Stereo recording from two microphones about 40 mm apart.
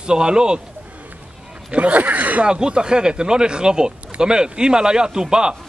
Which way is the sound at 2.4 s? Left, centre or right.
Right.